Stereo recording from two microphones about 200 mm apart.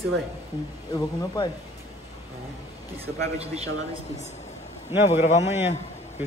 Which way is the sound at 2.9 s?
30° right (ahead or behind).